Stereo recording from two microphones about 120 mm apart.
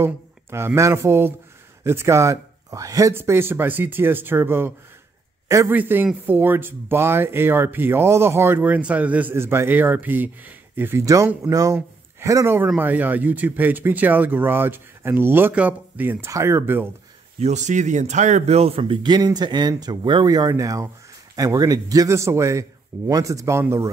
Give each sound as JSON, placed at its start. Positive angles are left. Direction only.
{"t": 0.0, "sound": "speech", "side_deg": -20}
{"t": 17.4, "sound": "speech", "side_deg": -75}